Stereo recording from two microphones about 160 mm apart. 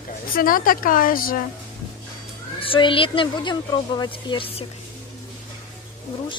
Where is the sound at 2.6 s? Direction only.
35° left (ahead or behind).